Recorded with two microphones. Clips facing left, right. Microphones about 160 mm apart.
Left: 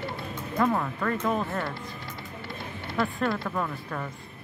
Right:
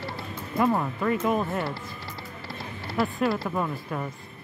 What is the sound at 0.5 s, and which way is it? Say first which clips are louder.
Music: right 2 dB; 10° right (ahead or behind).